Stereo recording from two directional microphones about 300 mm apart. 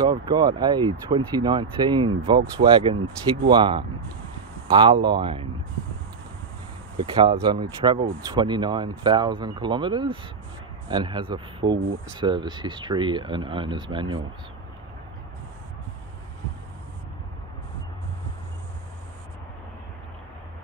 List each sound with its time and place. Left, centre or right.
0.0 s speech: centre
7.2 s speech: centre